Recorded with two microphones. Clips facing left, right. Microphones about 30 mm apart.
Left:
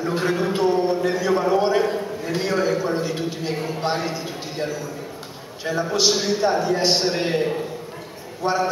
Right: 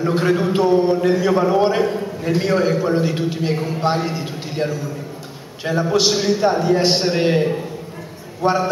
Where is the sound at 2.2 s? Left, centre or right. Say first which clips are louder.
Right 6 dB; centre.